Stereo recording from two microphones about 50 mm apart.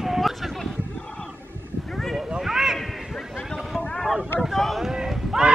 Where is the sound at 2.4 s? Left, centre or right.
Centre.